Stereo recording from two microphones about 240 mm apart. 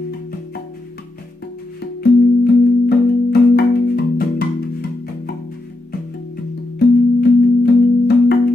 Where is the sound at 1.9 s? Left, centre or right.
Left.